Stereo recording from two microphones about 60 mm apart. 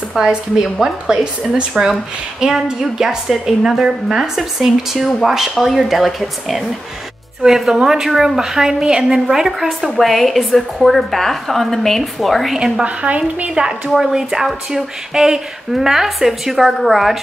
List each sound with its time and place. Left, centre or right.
0.1 s a woman's voice: centre
12.8 s a woman's voice: right
13.7 s speech: centre